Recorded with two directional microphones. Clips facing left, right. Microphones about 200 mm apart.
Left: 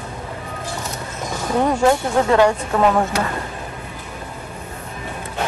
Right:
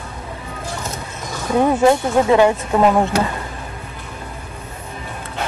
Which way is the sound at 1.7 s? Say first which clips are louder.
Right 2 dB; 15° right (ahead or behind).